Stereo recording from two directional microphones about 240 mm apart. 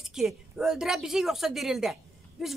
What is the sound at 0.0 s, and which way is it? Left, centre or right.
A man's voice, centre.